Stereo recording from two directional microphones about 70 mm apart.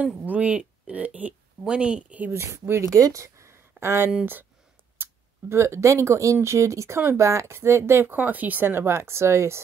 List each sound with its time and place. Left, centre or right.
0.0 s speech: right
2.3 s speech: right